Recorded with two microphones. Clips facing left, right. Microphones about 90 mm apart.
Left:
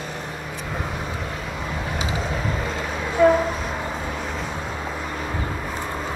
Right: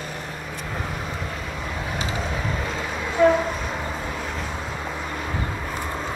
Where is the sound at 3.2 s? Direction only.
Centre (ahead or behind).